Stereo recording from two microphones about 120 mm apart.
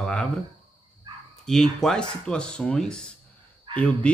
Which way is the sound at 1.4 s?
5° left (ahead or behind).